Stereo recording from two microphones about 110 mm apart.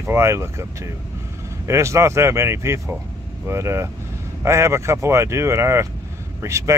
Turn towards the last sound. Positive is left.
turn(degrees=-25)  # may be behind; listen again after turning